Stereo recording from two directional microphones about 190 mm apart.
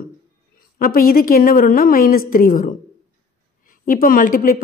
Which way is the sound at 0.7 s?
50° left (ahead or behind).